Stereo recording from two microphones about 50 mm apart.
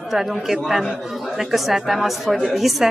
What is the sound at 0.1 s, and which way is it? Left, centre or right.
A woman's voice, centre.